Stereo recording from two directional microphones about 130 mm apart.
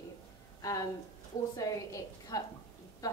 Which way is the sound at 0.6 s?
25° left (ahead or behind).